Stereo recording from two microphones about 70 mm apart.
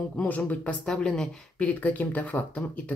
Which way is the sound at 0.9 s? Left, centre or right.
Centre.